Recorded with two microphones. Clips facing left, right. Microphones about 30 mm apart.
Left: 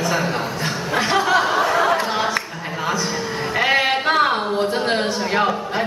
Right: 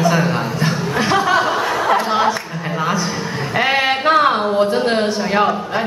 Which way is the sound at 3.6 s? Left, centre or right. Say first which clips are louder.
Right 2 dB; centre.